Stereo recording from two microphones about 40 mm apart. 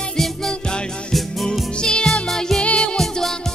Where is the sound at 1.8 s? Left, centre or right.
Left.